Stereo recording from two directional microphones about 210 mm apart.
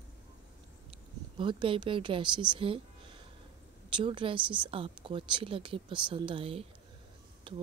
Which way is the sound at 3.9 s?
25° right (ahead or behind).